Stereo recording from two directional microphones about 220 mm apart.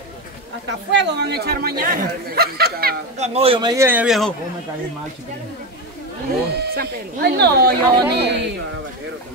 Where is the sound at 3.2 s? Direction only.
25° right (ahead or behind); by 4.3 s 5° right (ahead or behind).